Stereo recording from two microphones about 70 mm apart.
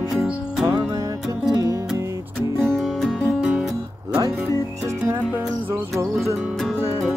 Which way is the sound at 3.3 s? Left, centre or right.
Centre.